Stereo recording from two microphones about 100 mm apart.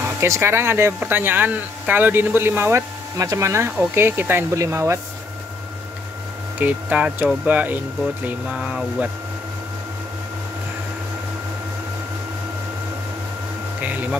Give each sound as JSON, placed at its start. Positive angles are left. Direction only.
{"t": 0.2, "sound": "speech", "side_deg": -25}
{"t": 6.6, "sound": "speech", "side_deg": -15}
{"t": 8.5, "sound": "speech", "side_deg": -5}